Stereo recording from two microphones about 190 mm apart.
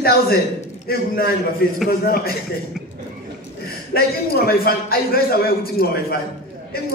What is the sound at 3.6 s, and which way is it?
A man's voice, 55° left (ahead or behind).